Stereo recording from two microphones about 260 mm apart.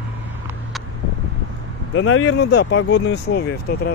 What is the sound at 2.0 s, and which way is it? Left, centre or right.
Speech, left.